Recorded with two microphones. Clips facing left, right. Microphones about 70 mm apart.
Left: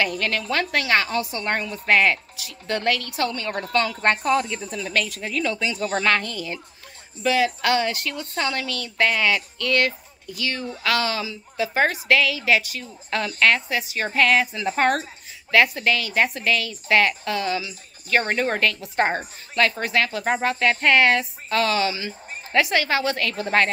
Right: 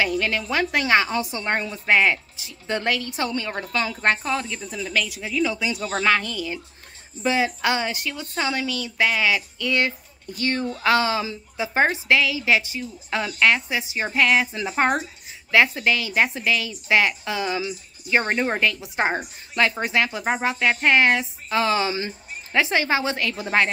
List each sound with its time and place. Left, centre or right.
0.0 s a woman's voice: centre
7.2 s a woman's voice: right
10.2 s speech: right
10.8 s a woman's voice: right